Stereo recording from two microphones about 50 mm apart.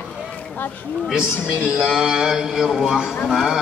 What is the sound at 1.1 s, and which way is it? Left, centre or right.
A man's voice, centre.